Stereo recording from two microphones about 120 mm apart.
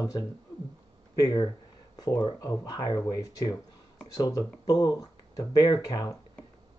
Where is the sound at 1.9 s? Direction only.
30° left (ahead or behind).